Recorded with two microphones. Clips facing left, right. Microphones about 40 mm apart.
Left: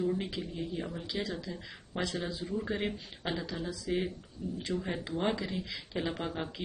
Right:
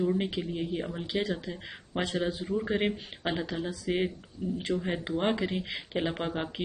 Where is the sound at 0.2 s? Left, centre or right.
Right.